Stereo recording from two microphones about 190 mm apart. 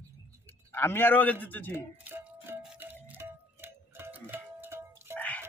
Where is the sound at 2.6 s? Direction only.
5° right (ahead or behind).